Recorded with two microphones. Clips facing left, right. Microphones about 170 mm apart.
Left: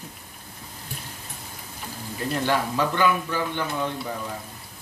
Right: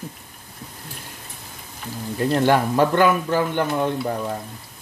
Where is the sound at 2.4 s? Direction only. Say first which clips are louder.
Right 6 dB; 55° right (ahead or behind).